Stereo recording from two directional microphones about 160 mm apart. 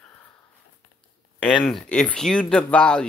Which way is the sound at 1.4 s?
5° left (ahead or behind).